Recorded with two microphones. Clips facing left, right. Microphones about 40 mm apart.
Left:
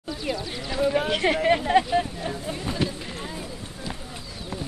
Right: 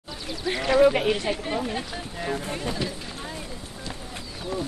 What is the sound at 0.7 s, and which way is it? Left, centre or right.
Speech, right.